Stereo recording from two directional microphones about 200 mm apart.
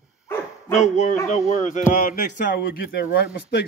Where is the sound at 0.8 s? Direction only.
35° left (ahead or behind).